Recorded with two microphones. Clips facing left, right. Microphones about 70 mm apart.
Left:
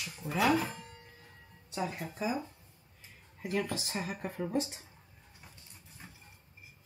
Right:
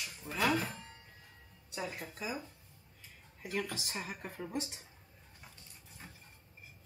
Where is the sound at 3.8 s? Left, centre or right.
Left.